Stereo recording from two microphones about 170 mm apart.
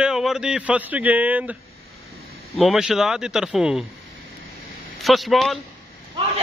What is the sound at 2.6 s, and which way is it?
A man's voice, centre (ahead or behind).